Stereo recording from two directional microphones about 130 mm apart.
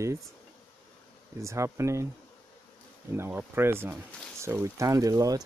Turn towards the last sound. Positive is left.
turn(degrees=-30)  # may be behind; listen again after turning